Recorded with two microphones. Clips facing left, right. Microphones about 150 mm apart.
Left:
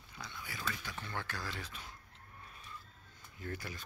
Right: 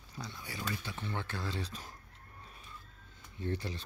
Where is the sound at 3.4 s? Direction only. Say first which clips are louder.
Right 6 dB; 25° right (ahead or behind).